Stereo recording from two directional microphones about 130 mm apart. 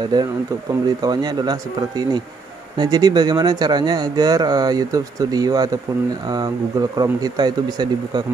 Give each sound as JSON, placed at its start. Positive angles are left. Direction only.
{"t": 0.1, "sound": "speech", "side_deg": -30}